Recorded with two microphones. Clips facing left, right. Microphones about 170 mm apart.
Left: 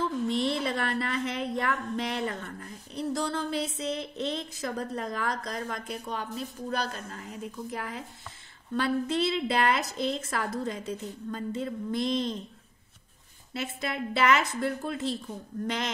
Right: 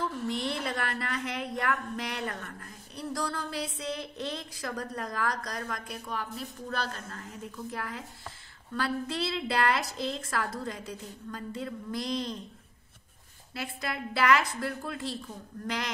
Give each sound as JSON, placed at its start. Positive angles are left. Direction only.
{"t": 0.3, "sound": "a woman's voice", "side_deg": 25}
{"t": 13.5, "sound": "a woman's voice", "side_deg": 25}